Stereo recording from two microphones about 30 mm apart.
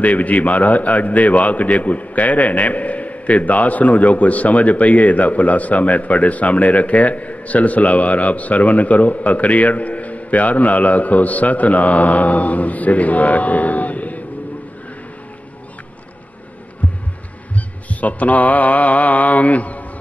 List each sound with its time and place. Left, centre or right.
0.0 s a man's voice: left
17.6 s mantra: left